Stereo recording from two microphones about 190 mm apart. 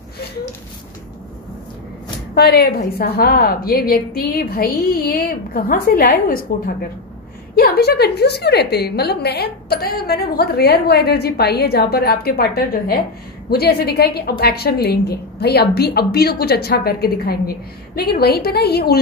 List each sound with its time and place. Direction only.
2.3 s a woman's voice: 55° left (ahead or behind)